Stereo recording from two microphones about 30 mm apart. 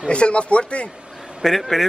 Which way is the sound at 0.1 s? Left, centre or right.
Left.